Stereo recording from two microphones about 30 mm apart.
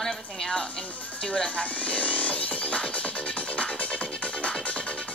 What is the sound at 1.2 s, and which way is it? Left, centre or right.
Speech, left.